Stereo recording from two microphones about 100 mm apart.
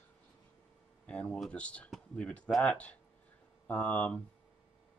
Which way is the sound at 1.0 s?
10° left (ahead or behind).